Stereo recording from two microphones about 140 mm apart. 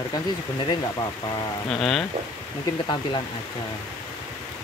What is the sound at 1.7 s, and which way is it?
Speech, centre (ahead or behind).